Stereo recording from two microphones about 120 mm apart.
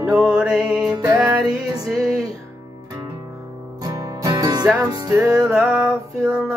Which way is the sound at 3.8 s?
35° right (ahead or behind).